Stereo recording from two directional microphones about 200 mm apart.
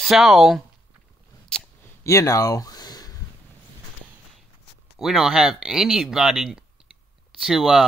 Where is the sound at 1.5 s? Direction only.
5° left (ahead or behind).